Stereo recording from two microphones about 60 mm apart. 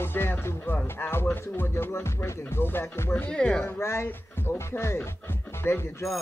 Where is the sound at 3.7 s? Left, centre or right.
Left.